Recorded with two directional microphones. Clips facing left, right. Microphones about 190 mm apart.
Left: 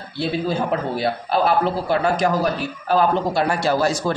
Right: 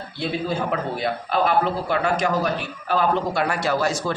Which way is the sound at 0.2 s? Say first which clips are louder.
Left 3 dB; 35° left (ahead or behind).